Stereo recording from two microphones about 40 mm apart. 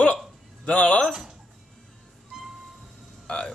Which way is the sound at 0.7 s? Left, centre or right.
Left.